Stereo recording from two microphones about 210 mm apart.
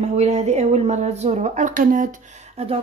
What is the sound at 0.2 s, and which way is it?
Speech, 30° right (ahead or behind).